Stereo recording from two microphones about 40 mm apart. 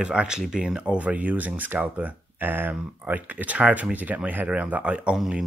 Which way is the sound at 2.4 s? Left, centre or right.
Right.